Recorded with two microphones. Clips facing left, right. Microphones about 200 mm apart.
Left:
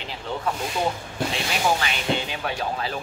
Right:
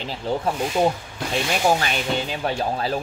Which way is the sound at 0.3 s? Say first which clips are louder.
Right 6 dB; 35° right (ahead or behind).